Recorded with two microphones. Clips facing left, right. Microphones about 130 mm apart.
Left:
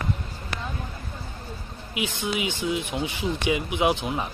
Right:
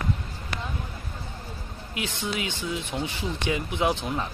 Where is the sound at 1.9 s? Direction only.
10° left (ahead or behind).